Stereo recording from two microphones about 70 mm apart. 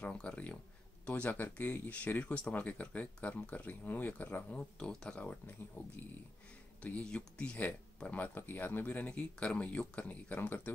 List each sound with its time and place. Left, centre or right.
0.0 s speech: centre; by 5.9 s left
6.8 s speech: centre